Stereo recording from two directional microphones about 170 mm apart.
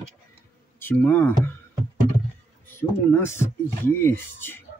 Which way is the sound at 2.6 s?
15° left (ahead or behind).